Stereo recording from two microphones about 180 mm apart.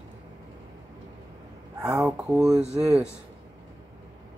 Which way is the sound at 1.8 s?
20° right (ahead or behind).